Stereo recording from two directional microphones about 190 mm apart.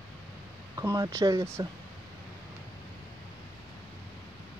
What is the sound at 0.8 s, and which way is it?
Speech, 15° right (ahead or behind).